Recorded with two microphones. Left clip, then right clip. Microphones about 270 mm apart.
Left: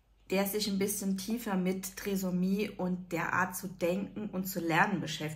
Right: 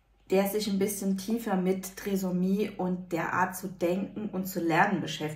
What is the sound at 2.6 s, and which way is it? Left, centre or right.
Speech, centre.